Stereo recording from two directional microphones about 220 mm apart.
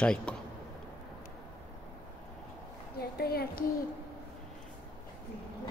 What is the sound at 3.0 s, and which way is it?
Speech, 45° left (ahead or behind).